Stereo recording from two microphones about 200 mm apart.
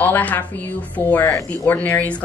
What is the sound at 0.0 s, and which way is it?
A woman's voice, 10° left (ahead or behind).